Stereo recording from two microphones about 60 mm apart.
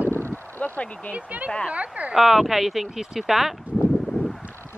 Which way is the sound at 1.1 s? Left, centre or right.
Right.